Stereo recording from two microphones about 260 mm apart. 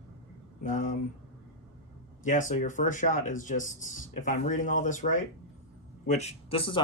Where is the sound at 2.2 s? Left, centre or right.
Left.